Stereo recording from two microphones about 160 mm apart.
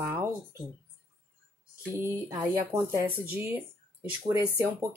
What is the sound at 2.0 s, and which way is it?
Speech, 20° right (ahead or behind).